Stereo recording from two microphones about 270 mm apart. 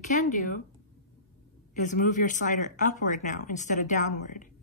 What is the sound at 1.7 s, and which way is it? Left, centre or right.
Speech, left.